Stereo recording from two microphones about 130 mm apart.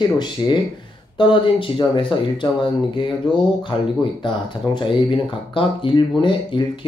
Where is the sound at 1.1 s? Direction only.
40° left (ahead or behind).